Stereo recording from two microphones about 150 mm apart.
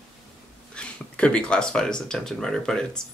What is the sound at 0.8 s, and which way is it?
Speech, 5° left (ahead or behind).